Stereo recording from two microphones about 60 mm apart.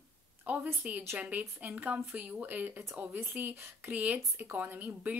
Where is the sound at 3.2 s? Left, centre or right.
Right.